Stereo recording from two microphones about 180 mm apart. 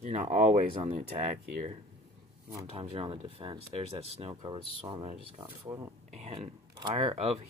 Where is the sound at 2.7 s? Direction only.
35° right (ahead or behind).